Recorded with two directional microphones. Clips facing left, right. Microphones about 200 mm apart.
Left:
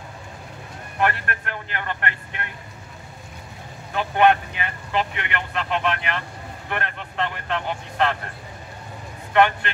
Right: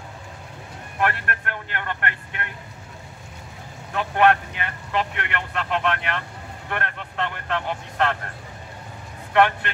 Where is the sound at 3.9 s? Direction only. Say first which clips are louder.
Left 1 dB; centre (ahead or behind).